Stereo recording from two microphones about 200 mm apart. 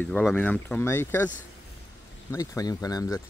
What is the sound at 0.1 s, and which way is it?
Speech, 5° left (ahead or behind).